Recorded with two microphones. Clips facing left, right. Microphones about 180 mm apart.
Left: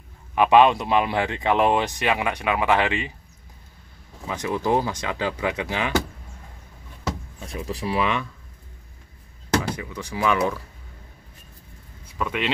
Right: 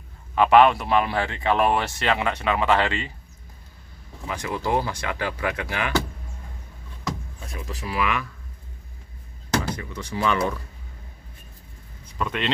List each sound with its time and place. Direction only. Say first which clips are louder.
0.3 s speech: even; 15° left (ahead or behind)
4.3 s speech: left 3 dB; 20° left (ahead or behind)
7.5 s speech: left 4 dB; 35° left (ahead or behind)
9.8 s speech: even; 10° left (ahead or behind)
12.1 s speech: even; 5° left (ahead or behind)